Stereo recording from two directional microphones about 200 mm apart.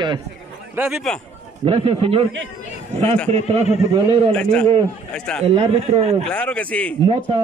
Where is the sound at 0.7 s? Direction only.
10° right (ahead or behind).